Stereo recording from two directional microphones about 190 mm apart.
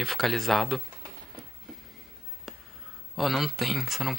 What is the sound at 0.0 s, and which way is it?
Speech, centre (ahead or behind).